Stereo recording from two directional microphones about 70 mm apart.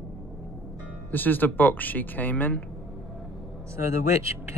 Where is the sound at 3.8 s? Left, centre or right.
Right.